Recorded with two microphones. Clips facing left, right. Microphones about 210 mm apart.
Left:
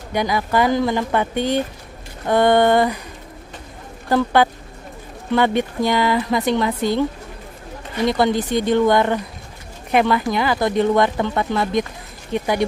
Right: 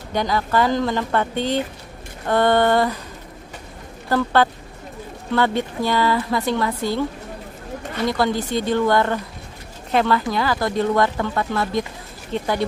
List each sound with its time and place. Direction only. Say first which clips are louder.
0.1 s speech: left 1 dB; 10° left (ahead or behind)
4.1 s speech: left 2 dB; 15° left (ahead or behind)